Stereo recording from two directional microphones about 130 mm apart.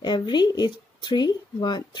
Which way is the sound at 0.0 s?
35° left (ahead or behind).